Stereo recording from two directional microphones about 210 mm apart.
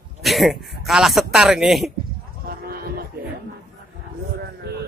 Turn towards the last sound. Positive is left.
turn(degrees=-45)  # may be behind; listen again after turning